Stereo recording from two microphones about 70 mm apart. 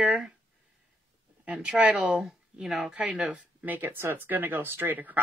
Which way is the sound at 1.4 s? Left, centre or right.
Right.